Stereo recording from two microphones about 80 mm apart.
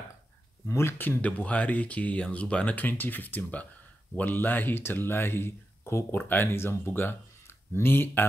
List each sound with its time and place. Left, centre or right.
0.7 s speech: left